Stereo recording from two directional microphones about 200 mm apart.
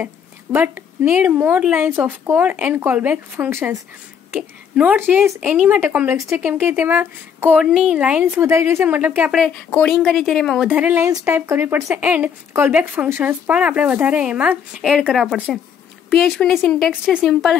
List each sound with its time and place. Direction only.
0.0 s a woman's voice: 10° right (ahead or behind)